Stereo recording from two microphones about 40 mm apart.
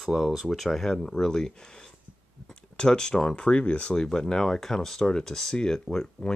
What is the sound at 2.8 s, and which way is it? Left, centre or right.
Speech, centre.